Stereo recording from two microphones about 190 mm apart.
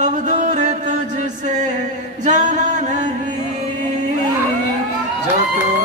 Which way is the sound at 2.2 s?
40° right (ahead or behind).